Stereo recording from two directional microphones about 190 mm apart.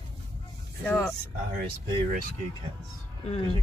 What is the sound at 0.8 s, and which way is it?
Speech, 5° left (ahead or behind).